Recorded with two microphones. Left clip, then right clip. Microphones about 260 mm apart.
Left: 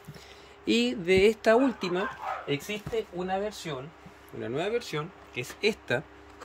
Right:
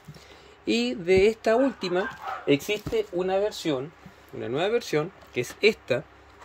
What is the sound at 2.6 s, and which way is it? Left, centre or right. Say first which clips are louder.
Speech: right 5 dB; right.